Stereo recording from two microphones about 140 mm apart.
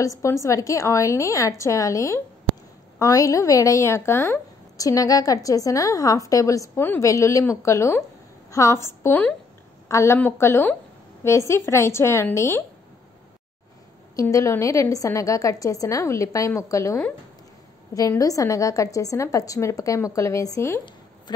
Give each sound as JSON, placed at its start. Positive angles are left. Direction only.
{"t": 0.0, "sound": "a woman's voice", "side_deg": 20}
{"t": 14.1, "sound": "a woman's voice", "side_deg": 20}
{"t": 21.3, "sound": "speech", "side_deg": 30}